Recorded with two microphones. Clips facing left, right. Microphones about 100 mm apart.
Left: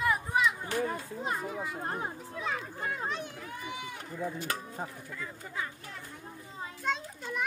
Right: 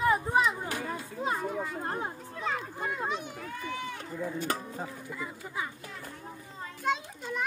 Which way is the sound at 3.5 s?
15° left (ahead or behind).